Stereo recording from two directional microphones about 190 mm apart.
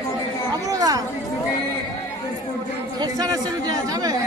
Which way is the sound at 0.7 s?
20° right (ahead or behind).